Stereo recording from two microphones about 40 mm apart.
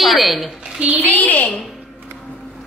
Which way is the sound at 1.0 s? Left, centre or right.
Left.